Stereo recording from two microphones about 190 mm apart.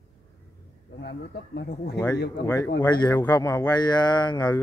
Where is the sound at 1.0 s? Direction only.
60° left (ahead or behind).